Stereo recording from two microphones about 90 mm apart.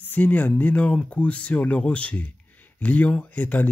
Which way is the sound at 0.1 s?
15° left (ahead or behind).